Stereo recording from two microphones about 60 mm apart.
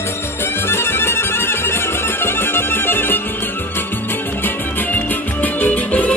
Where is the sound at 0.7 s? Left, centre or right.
Left.